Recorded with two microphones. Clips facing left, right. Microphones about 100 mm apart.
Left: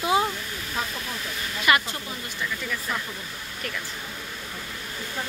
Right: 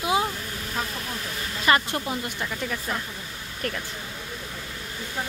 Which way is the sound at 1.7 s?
35° right (ahead or behind).